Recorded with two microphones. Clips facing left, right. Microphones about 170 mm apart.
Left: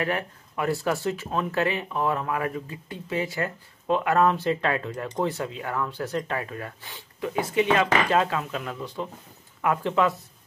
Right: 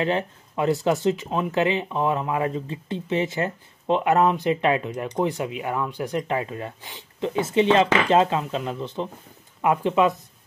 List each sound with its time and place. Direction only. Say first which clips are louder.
0.0 s speech: right 4 dB; 20° right (ahead or behind)